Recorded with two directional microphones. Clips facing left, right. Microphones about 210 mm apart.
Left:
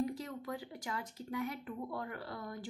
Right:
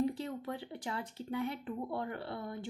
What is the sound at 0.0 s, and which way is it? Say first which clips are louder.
A woman's voice: right 3 dB; 30° right (ahead or behind).